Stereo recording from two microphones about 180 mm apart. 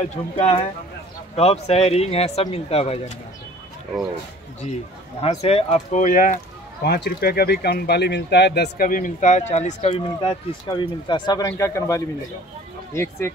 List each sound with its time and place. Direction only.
0.0 s speech: 40° left (ahead or behind)
5.2 s speech: 35° left (ahead or behind); by 13.3 s 15° left (ahead or behind)